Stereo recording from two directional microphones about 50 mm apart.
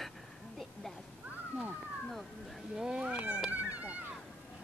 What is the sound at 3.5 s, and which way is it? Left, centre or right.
Cat, right.